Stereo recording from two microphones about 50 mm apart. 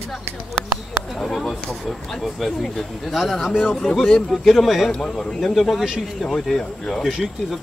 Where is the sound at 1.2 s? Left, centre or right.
Centre.